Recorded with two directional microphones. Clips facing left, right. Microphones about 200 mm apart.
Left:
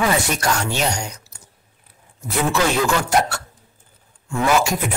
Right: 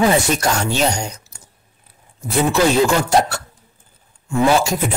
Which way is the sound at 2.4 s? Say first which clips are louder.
Right 5 dB; 30° right (ahead or behind).